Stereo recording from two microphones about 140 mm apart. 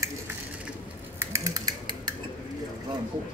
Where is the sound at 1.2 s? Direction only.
20° right (ahead or behind).